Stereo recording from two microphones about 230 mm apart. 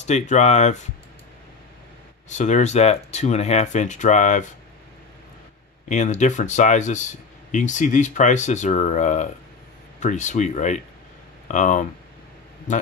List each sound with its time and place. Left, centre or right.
0.0 s speech: left
2.2 s speech: left
5.9 s speech: left